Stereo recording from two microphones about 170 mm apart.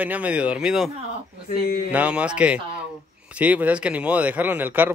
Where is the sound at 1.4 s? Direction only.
60° left (ahead or behind).